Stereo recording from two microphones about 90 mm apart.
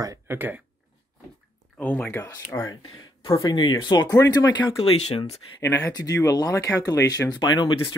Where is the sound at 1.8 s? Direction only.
20° left (ahead or behind).